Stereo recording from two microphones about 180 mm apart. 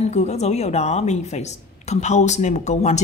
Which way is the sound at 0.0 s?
35° left (ahead or behind).